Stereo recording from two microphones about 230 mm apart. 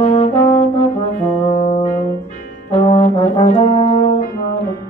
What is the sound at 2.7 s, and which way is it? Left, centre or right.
Brass instrument, left.